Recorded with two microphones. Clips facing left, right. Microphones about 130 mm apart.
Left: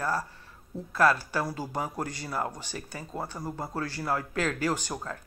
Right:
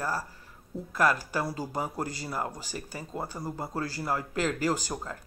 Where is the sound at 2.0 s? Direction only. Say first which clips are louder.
Even; 35° right (ahead or behind).